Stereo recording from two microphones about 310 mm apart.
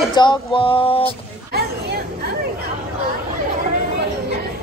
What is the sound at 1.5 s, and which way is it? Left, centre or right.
Hubbub, right.